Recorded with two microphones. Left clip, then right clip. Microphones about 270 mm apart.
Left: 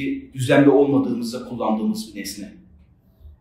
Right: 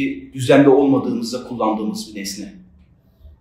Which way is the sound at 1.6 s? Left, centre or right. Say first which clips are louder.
Right 3 dB; centre.